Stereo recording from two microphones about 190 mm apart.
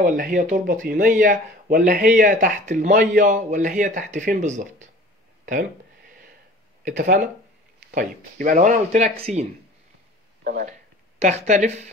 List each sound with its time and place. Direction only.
0.0 s a man's voice: 45° right (ahead or behind)
5.4 s a sound: 45° right (ahead or behind)
6.8 s a man's voice: 45° right (ahead or behind)
10.4 s speech: 50° right (ahead or behind)
11.1 s speech: 35° right (ahead or behind)